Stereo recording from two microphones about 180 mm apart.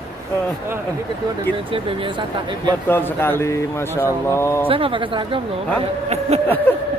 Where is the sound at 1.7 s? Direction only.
30° right (ahead or behind).